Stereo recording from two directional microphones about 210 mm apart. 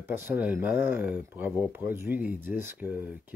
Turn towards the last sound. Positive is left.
turn(degrees=-10)  # may be behind; listen again after turning